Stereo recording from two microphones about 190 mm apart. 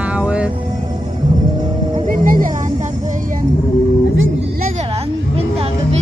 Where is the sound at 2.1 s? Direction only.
45° right (ahead or behind).